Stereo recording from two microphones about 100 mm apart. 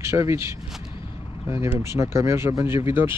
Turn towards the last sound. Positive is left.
turn(degrees=-25)  # may be behind; listen again after turning